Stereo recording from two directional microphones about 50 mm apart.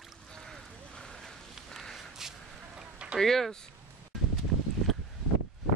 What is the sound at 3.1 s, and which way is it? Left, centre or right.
Speech, centre.